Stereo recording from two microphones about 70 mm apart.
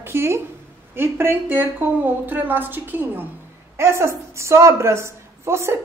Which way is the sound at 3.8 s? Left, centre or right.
Right.